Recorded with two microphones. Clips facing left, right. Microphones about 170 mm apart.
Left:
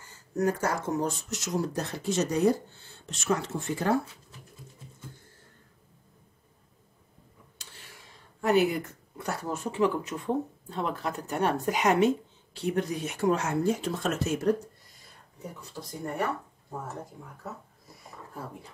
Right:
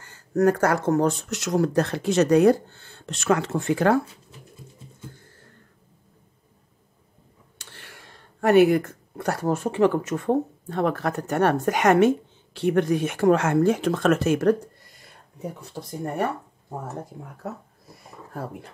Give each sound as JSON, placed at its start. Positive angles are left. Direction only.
{"t": 0.0, "sound": "speech", "side_deg": -75}
{"t": 7.7, "sound": "speech", "side_deg": -75}
{"t": 18.3, "sound": "speech", "side_deg": -70}